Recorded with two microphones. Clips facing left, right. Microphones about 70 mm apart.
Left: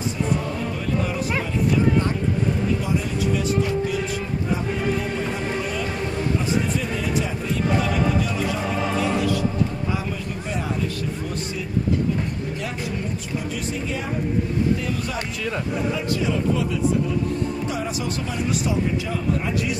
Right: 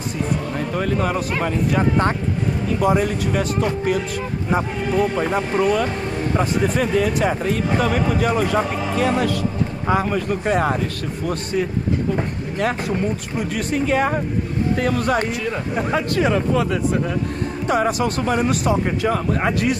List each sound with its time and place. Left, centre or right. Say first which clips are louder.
0.7 s speech: right 7 dB; right
4.5 s speech: right 3 dB; right
12.2 s speech: right 5 dB; right